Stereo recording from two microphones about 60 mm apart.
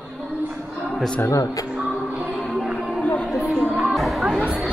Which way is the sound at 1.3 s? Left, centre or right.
Left.